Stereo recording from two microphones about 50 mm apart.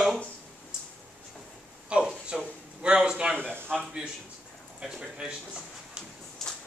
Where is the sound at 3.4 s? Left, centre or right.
Right.